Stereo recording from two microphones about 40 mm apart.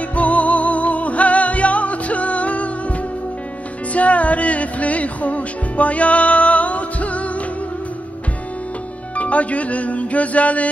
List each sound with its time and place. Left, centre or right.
0.1 s music: left
3.9 s music: left
9.1 s music: left